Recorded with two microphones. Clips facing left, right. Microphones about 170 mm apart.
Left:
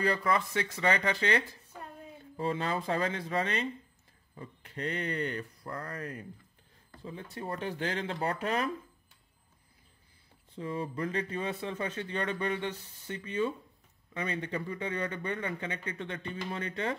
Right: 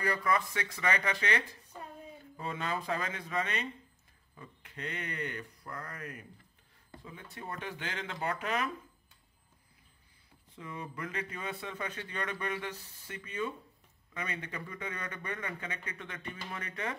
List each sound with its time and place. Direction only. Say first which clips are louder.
0.0 s a man's voice: left 2 dB; 30° left (ahead or behind)
7.3 s a man's voice: left 6 dB; 35° left (ahead or behind)
10.5 s a man's voice: left 8 dB; 30° left (ahead or behind)